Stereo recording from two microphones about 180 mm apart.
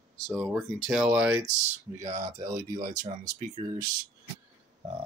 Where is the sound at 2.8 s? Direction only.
45° right (ahead or behind).